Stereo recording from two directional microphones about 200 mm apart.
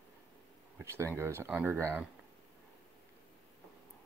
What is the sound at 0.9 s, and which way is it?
Speech, 10° right (ahead or behind).